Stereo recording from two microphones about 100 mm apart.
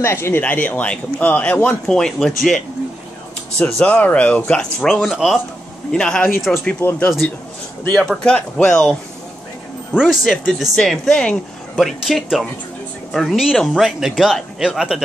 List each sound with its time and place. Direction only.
0.0 s speech: 25° left (ahead or behind)
1.9 s speech: 5° left (ahead or behind)
3.5 s speech: 15° left (ahead or behind)
5.1 s speech: 5° right (ahead or behind)
5.9 s speech: 5° left (ahead or behind)
6.8 s speech: 20° left (ahead or behind)
8.0 s speech: 5° left (ahead or behind)
9.9 s speech: centre (ahead or behind)